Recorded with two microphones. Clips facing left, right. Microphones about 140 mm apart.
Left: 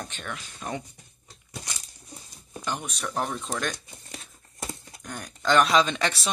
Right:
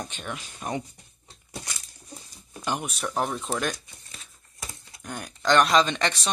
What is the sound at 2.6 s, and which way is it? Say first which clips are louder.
Speech: right 3 dB; 15° right (ahead or behind).